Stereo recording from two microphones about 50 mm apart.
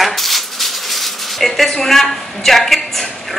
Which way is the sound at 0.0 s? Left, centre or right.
Centre.